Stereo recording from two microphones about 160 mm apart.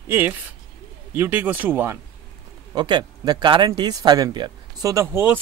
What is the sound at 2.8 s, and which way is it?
Speech, 30° right (ahead or behind).